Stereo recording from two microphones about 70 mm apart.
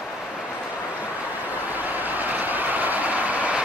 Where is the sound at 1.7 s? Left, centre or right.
Right.